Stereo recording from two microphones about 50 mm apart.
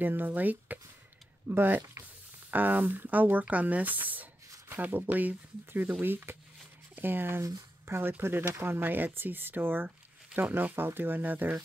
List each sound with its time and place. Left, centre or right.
0.0 s speech: right
1.5 s speech: right
2.5 s speech: right